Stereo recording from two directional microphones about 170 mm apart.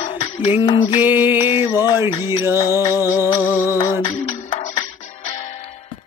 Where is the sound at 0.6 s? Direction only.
30° left (ahead or behind).